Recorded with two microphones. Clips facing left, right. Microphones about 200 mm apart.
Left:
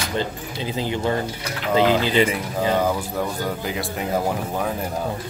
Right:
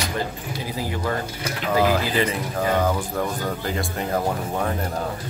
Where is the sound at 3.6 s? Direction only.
5° left (ahead or behind).